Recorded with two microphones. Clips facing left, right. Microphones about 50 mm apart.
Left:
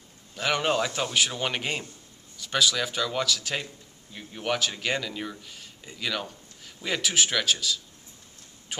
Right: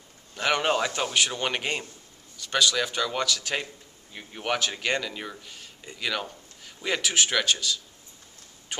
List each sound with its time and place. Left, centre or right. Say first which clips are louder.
0.4 s speech: right 1 dB; centre
4.1 s speech: even; centre